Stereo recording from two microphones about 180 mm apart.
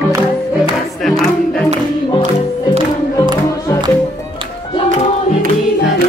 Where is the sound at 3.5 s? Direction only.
15° left (ahead or behind).